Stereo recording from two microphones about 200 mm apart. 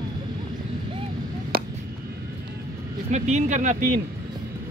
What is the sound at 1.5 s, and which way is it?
Music, 50° right (ahead or behind).